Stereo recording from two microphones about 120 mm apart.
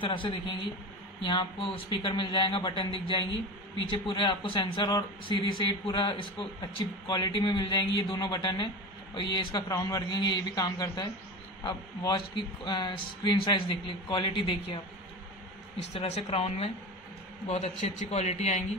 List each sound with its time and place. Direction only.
0.0 s a man's voice: 45° left (ahead or behind)
4.8 s a man's voice: 35° left (ahead or behind)
9.7 s a man's voice: 30° left (ahead or behind); by 14.8 s 45° left (ahead or behind)
15.8 s a woman's voice: 60° left (ahead or behind)
17.5 s a man's voice: 80° left